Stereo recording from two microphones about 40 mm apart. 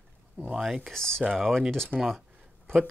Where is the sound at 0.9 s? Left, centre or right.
Centre.